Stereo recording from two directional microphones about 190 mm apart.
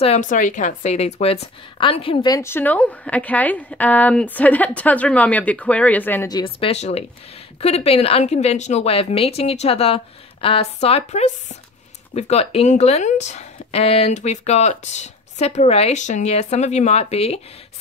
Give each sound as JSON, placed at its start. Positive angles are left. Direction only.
{"t": 0.0, "sound": "a woman's voice", "side_deg": 35}